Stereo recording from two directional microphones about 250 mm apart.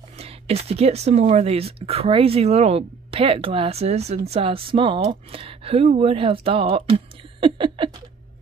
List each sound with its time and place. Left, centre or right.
0.2 s speech: right